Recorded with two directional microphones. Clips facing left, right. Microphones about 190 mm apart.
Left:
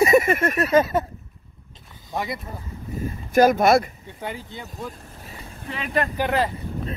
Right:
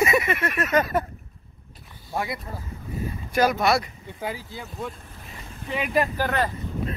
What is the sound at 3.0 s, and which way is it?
Speech, 50° left (ahead or behind).